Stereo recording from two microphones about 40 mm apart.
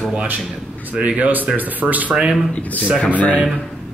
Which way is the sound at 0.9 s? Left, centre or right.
Right.